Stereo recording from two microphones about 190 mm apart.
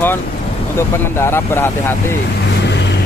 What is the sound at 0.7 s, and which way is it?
Speech, 15° left (ahead or behind).